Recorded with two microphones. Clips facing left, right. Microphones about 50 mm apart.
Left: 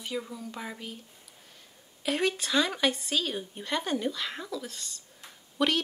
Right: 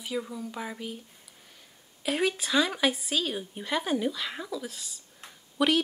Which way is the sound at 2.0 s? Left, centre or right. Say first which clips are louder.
Right 1 dB; centre.